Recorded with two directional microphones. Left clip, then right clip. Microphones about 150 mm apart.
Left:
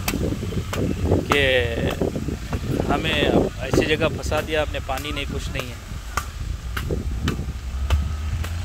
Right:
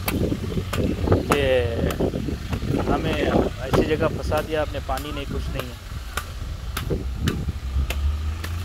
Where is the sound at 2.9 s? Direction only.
45° left (ahead or behind).